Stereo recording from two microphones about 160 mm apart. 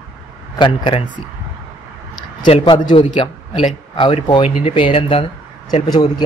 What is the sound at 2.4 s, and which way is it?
A man's voice, 30° left (ahead or behind).